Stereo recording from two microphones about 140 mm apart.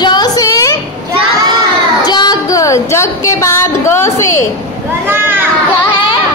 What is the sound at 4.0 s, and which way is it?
Speech, 20° left (ahead or behind).